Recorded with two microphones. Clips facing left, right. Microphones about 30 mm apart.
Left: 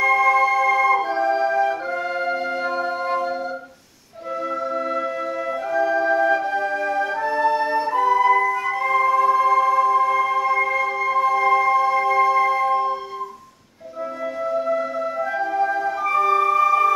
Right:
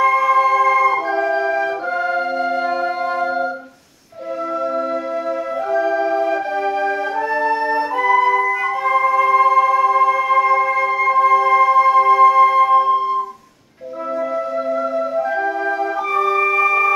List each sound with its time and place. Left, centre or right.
0.0 s music: centre
5.7 s organ: centre
7.2 s music: centre
11.3 s music: centre
14.7 s music: centre